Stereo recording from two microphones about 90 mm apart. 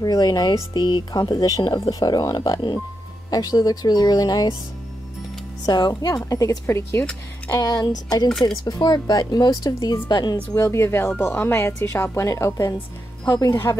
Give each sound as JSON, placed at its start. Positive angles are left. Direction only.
{"t": 0.0, "sound": "speech", "side_deg": 45}
{"t": 5.7, "sound": "speech", "side_deg": 50}
{"t": 6.6, "sound": "speech", "side_deg": 25}
{"t": 7.5, "sound": "speech", "side_deg": 40}
{"t": 8.3, "sound": "speech", "side_deg": 10}
{"t": 8.6, "sound": "speech", "side_deg": 50}
{"t": 10.5, "sound": "speech", "side_deg": 30}